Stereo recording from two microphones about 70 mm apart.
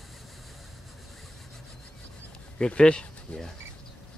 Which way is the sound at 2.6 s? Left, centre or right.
Centre.